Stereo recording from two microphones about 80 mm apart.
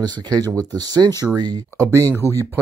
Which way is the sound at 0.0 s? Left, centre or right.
Right.